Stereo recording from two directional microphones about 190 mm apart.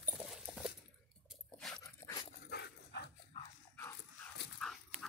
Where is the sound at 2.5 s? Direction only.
60° left (ahead or behind).